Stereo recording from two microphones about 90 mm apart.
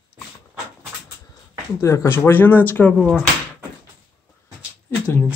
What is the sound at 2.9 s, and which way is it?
Speech, 5° left (ahead or behind).